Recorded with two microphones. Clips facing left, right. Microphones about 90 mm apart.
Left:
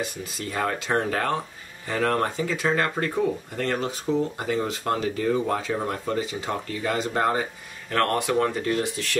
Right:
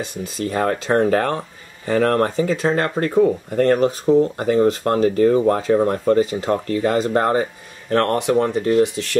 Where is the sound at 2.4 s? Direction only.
35° right (ahead or behind).